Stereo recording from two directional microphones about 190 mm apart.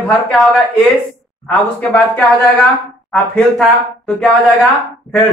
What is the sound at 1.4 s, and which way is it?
Speech, 5° left (ahead or behind).